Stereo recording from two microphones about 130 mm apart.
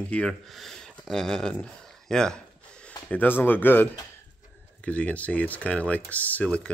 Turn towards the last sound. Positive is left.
turn(degrees=10)  # may be behind; listen again after turning